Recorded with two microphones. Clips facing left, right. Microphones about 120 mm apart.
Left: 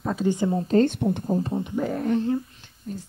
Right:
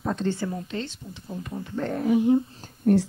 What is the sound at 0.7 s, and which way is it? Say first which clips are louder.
Speech: left 14 dB; 55° left (ahead or behind).